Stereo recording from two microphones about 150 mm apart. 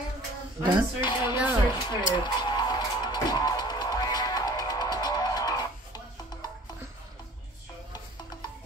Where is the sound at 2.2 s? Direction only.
30° left (ahead or behind).